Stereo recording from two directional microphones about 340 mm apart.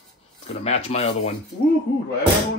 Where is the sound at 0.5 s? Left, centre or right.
Centre.